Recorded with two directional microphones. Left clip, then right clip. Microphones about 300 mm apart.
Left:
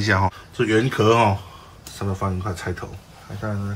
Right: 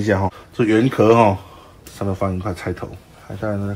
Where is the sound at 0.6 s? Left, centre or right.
Centre.